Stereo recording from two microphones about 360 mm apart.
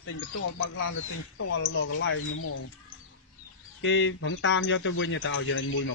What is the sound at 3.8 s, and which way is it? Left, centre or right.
Speech, left.